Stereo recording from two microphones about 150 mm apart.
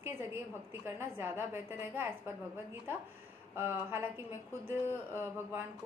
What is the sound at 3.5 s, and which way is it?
Speech, 15° right (ahead or behind).